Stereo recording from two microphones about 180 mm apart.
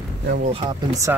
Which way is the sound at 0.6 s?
20° right (ahead or behind).